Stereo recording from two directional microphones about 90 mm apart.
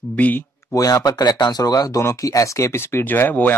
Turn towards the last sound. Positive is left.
turn(degrees=20)  # may be behind; listen again after turning